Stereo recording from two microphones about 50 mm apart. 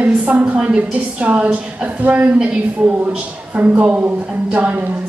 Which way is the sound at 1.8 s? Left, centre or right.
Right.